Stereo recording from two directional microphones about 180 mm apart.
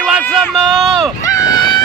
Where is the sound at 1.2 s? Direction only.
20° left (ahead or behind).